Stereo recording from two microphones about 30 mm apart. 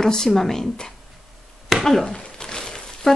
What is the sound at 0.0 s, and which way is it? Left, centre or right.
Speech, left.